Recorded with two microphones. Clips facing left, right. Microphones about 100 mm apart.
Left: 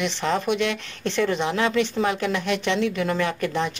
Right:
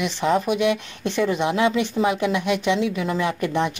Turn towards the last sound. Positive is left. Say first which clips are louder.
# right 2 dB
turn(degrees=-15)  # may be behind; listen again after turning